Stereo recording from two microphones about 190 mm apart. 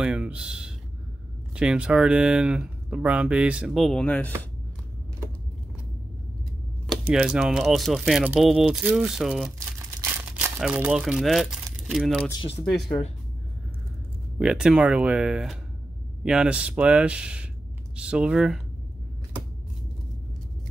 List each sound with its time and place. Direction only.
0.0 s speech: 5° right (ahead or behind)
6.9 s speech: 5° right (ahead or behind)
9.6 s crumpling: 10° right (ahead or behind)
12.3 s speech: 25° left (ahead or behind)
14.4 s speech: 5° right (ahead or behind)